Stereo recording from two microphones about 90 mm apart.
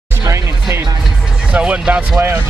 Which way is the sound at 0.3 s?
30° right (ahead or behind).